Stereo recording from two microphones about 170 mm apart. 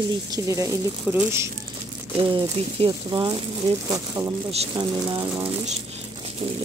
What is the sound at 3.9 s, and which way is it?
Speech, 20° right (ahead or behind).